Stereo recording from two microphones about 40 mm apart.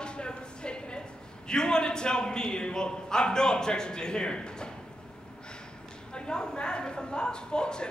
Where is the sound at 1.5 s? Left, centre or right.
Centre.